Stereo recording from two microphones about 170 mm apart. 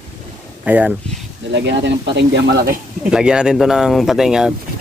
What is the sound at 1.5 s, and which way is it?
Speech, 90° right.